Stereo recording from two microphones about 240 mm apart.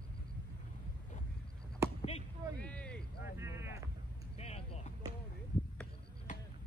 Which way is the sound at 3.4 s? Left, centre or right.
Centre.